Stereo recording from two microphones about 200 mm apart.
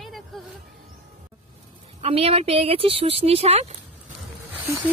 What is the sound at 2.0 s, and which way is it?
Speech, 30° right (ahead or behind).